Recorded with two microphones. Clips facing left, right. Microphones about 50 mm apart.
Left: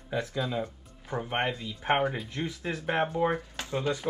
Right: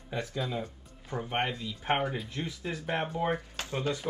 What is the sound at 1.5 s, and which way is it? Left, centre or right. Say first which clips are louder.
Speech: left 3 dB; centre.